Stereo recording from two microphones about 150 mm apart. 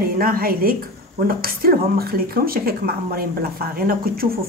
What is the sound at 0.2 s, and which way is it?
Speech, 80° right.